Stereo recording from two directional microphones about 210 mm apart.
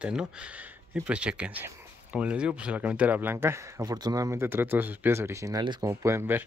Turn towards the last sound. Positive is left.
turn(degrees=-15)  # may be behind; listen again after turning